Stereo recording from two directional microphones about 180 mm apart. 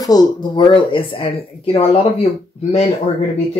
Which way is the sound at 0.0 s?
20° left (ahead or behind).